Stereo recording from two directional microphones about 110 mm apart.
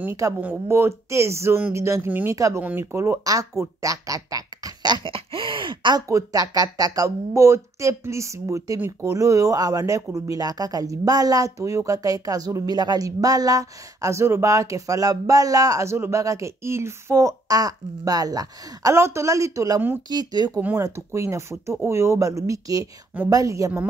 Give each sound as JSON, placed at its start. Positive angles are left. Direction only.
{"t": 0.4, "sound": "speech", "side_deg": -20}
{"t": 2.6, "sound": "speech", "side_deg": -20}
{"t": 6.0, "sound": "speech", "side_deg": -30}
{"t": 20.8, "sound": "speech", "side_deg": -25}